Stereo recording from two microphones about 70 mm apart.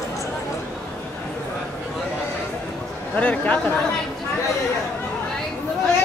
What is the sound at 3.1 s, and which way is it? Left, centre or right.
Speech, left.